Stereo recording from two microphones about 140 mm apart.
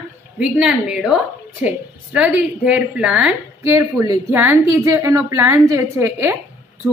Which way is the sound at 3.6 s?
20° right (ahead or behind).